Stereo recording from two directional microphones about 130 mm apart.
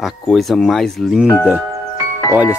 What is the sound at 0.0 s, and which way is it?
Speech, centre (ahead or behind).